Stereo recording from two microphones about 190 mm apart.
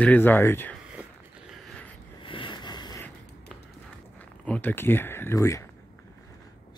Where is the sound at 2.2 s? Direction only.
25° left (ahead or behind).